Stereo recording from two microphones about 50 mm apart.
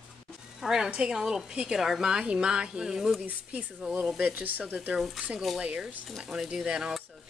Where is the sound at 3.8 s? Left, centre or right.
Right.